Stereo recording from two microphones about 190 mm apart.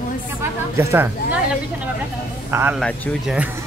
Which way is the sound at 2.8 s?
5° left (ahead or behind).